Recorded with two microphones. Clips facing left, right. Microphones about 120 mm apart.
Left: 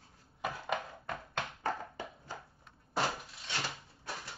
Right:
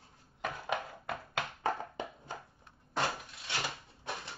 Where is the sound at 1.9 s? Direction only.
20° right (ahead or behind).